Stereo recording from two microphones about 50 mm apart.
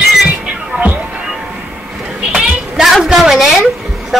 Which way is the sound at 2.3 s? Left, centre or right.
Centre.